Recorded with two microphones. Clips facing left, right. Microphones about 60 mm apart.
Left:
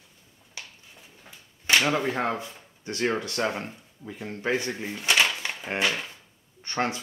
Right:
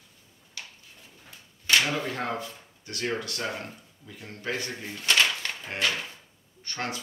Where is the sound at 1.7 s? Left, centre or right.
Left.